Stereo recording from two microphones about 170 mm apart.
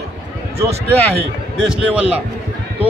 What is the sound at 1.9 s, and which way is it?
Speech, 10° right (ahead or behind).